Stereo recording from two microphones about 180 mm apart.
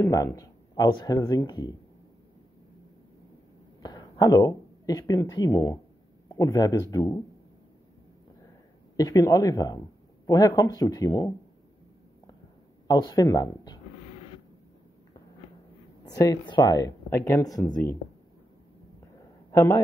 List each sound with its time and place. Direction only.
0.0 s speech: 15° left (ahead or behind)
3.8 s speech: 20° left (ahead or behind)
8.9 s speech: 20° left (ahead or behind)
12.8 s speech: 20° left (ahead or behind)
16.0 s speech: 20° left (ahead or behind)
19.5 s a man's voice: 15° left (ahead or behind)